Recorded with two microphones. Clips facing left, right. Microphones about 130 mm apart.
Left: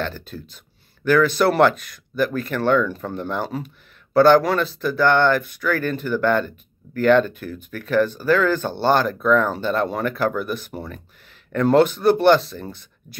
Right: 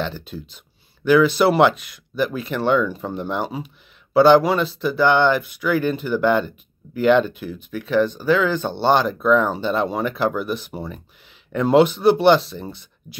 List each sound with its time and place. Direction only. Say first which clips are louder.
0.0 s speech: right 1 dB; centre (ahead or behind)